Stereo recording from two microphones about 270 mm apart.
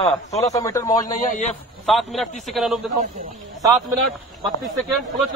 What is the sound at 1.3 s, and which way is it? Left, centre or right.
Speech, left.